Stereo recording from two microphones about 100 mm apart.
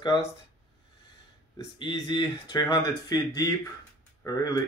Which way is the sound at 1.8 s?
50° left (ahead or behind).